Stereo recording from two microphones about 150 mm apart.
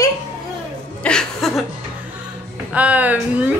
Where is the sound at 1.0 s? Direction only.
5° left (ahead or behind).